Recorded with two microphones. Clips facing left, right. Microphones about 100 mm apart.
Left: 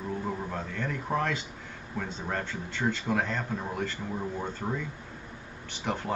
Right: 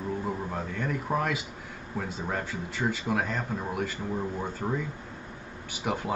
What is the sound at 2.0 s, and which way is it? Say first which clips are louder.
Speech: right 1 dB; 10° right (ahead or behind).